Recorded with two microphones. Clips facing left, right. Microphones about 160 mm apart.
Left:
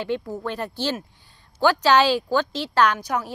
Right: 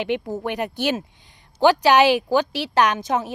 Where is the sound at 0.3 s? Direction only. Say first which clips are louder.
Right 3 dB; 20° right (ahead or behind).